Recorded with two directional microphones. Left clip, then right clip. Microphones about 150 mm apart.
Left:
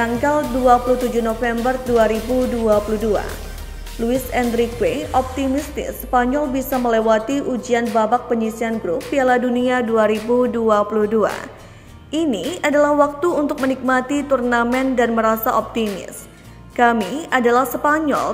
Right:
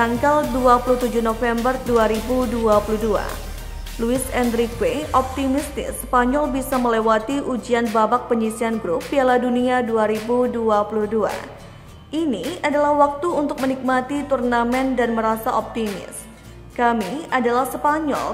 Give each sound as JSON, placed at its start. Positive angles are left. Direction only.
{"t": 0.0, "sound": "a woman's voice", "side_deg": -5}
{"t": 4.0, "sound": "a woman's voice", "side_deg": -5}